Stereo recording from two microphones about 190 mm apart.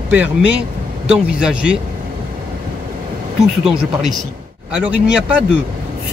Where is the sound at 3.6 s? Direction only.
5° right (ahead or behind).